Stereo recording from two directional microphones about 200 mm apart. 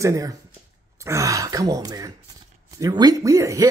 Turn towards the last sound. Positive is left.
turn(degrees=-15)  # may be behind; listen again after turning